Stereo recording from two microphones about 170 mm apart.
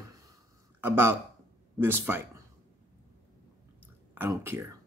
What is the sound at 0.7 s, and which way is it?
Speech, 15° right (ahead or behind).